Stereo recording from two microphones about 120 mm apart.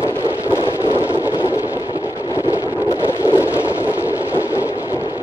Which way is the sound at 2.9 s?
25° left (ahead or behind).